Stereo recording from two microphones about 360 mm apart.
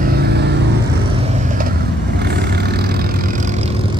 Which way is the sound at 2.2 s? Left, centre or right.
Right.